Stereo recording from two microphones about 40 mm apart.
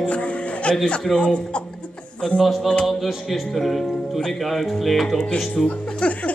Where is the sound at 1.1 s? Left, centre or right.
Left.